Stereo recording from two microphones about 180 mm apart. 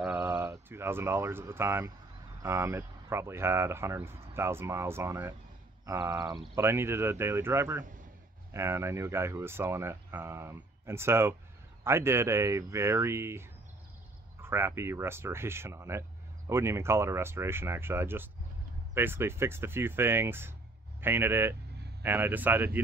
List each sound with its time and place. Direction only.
0.0 s speech: 10° right (ahead or behind)